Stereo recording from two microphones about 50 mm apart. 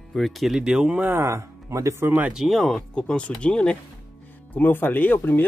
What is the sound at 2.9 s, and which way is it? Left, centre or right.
Speech, centre.